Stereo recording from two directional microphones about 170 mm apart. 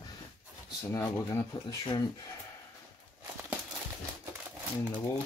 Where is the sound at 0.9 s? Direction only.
15° left (ahead or behind).